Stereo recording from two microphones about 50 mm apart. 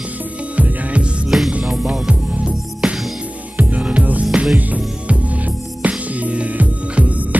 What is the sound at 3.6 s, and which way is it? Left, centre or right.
Music, right.